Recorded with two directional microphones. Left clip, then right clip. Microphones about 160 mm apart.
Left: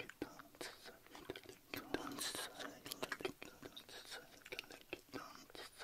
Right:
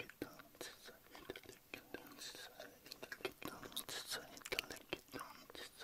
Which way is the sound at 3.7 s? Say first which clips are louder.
Right 10 dB; 45° right (ahead or behind).